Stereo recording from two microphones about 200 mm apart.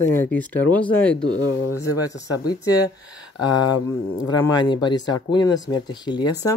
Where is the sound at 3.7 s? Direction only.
20° left (ahead or behind).